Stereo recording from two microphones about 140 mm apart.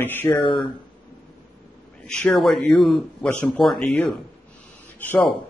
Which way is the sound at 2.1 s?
5° left (ahead or behind).